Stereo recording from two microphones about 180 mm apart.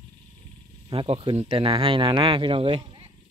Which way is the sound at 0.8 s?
30° right (ahead or behind).